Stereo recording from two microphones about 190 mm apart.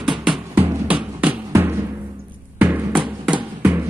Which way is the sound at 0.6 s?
10° right (ahead or behind).